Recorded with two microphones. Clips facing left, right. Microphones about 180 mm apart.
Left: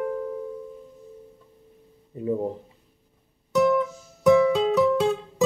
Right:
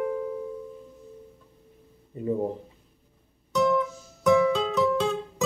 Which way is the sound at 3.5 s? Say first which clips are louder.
Left 3 dB; 10° left (ahead or behind).